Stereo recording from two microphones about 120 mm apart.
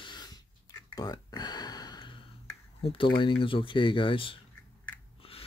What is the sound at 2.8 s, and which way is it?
Speech, 45° left (ahead or behind).